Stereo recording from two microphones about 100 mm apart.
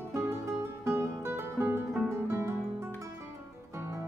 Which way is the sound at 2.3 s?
25° right (ahead or behind).